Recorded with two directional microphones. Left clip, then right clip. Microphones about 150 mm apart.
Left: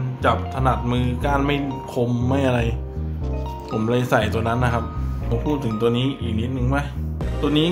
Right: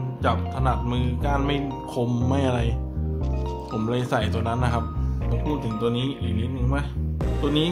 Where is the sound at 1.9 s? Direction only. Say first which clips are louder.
Left 3 dB; 25° right (ahead or behind).